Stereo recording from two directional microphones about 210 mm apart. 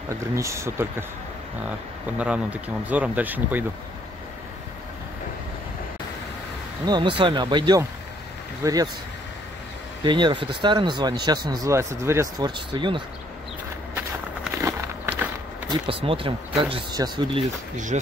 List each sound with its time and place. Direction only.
0.4 s speech: 15° right (ahead or behind)
2.1 s speech: 5° right (ahead or behind)
6.9 s speech: 20° right (ahead or behind)
10.0 s speech: 20° right (ahead or behind)
13.9 s walk: 10° right (ahead or behind)
15.7 s speech: 25° right (ahead or behind)